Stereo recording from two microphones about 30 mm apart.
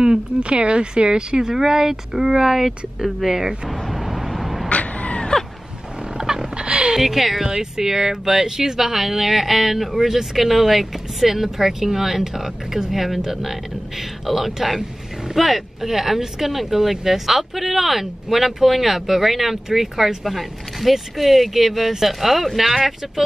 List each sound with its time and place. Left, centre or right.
0.4 s speech: right
1.5 s speech: centre
3.9 s vehicle: centre
4.6 s cat: left
6.1 s a sound: centre
6.5 s a sound: right
7.0 s speech: centre
7.4 s speech: centre
9.9 s speech: centre